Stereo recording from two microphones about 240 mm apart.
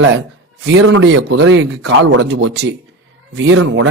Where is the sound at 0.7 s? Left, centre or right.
Right.